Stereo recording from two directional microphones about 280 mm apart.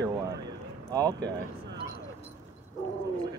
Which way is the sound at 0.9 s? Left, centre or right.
Centre.